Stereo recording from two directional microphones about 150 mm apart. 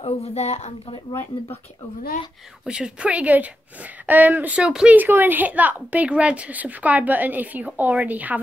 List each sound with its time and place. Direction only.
0.0 s a woman's voice: 45° left (ahead or behind)
2.6 s a woman's voice: 5° right (ahead or behind)